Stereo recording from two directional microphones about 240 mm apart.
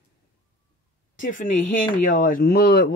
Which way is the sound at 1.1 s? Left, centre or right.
Left.